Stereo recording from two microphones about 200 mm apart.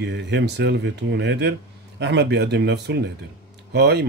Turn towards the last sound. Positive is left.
turn(degrees=-55)  # may be behind; listen again after turning